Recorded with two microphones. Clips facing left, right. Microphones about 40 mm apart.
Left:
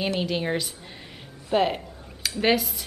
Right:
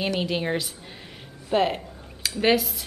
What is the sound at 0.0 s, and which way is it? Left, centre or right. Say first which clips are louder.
A woman's voice: even; centre.